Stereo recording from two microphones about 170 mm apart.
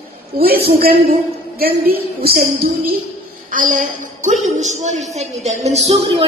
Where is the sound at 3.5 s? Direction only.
50° right (ahead or behind).